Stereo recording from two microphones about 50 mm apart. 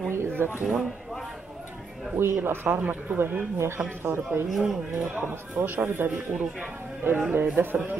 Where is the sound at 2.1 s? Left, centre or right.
Right.